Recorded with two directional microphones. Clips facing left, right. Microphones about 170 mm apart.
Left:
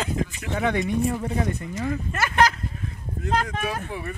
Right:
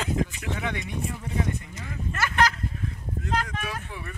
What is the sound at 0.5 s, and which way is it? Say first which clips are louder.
Speech: left 8 dB; 45° left (ahead or behind).